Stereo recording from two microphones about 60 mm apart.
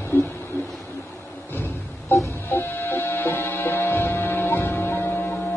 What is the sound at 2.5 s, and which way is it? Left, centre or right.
Music, left.